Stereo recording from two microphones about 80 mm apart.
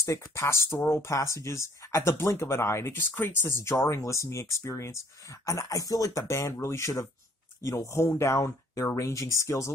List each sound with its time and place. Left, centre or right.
0.0 s speech: left